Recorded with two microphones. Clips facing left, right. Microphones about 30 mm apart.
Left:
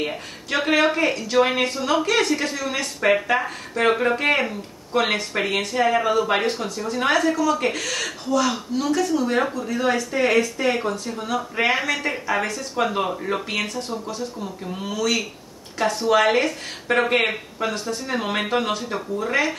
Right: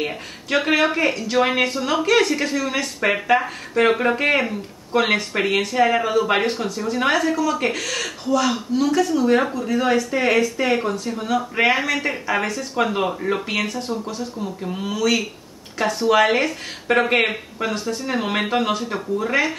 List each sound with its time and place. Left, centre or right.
0.0 s speech: centre